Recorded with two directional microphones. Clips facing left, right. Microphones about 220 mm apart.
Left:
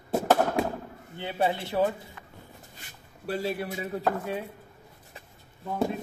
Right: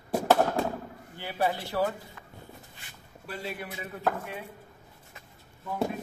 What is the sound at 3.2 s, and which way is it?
Speech, 40° left (ahead or behind).